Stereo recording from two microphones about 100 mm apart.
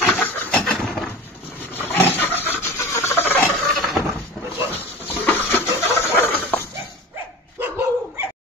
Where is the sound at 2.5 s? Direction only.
25° left (ahead or behind).